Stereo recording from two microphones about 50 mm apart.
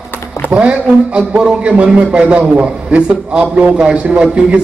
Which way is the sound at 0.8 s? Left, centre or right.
Centre.